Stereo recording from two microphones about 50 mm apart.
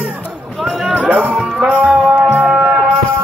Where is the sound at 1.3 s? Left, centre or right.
Centre.